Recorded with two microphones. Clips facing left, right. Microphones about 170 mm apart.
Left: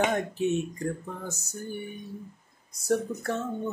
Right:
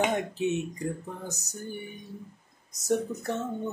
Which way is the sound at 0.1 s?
15° right (ahead or behind).